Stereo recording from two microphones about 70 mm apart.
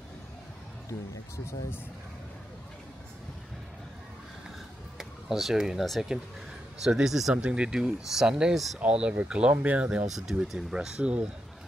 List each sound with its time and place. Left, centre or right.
0.8 s speech: left
4.9 s speech: centre
7.3 s speech: centre
10.1 s speech: centre